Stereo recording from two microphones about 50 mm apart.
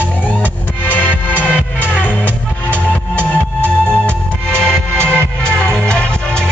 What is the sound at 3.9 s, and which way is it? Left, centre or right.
Music, centre.